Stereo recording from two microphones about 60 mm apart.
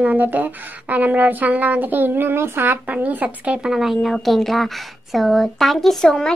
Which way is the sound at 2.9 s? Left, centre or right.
Right.